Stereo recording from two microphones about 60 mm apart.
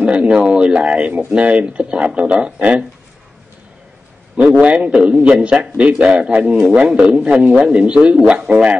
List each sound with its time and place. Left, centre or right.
0.0 s speech: centre
4.6 s a man's voice: right
6.6 s speech: centre
8.5 s a man's voice: right